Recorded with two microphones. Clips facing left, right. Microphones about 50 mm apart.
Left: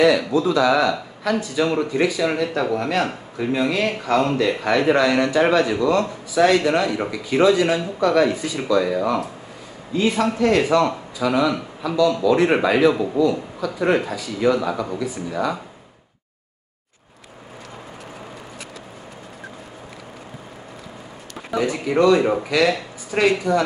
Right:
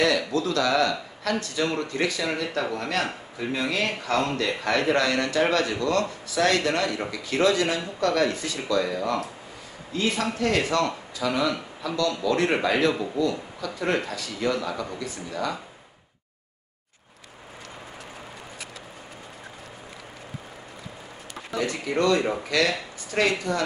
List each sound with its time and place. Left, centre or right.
0.0 s speech: centre
21.5 s speech: centre